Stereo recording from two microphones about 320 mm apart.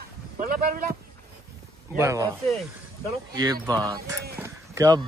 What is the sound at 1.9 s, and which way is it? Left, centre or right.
Speech, centre.